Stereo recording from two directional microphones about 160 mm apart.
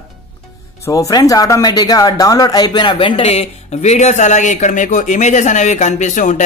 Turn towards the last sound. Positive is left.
turn(degrees=50)  # may be behind; listen again after turning